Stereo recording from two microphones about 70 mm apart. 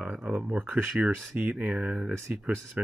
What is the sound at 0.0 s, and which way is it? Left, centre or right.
Speech, right.